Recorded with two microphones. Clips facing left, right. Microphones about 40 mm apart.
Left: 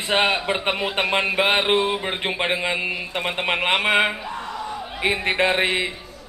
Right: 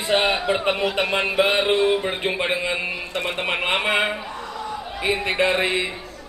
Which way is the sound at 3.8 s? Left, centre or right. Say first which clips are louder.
Left 3 dB; left.